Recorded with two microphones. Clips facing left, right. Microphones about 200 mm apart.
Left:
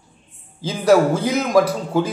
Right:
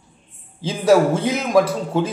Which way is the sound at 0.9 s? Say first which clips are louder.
Even; 25° right (ahead or behind).